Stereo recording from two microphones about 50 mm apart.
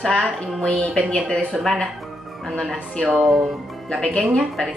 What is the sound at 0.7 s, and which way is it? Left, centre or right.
Speech, left.